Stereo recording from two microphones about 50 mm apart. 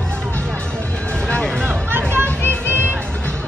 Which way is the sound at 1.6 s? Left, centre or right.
Right.